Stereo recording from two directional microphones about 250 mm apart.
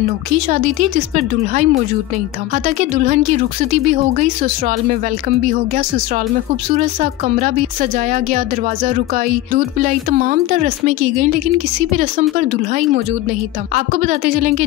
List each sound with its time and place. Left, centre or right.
0.5 s a woman's voice: right
7.0 s a woman's voice: right